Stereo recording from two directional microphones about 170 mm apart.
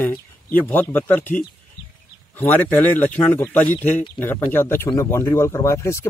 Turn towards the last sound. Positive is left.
turn(degrees=15)  # may be behind; listen again after turning